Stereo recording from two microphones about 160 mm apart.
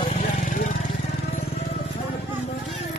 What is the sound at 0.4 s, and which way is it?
Vehicle, 55° left (ahead or behind).